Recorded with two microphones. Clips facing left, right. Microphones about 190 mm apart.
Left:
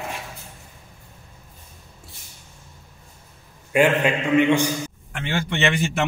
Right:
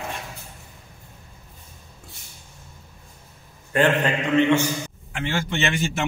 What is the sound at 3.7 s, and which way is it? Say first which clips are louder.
A man's voice: left 2 dB; 10° left (ahead or behind).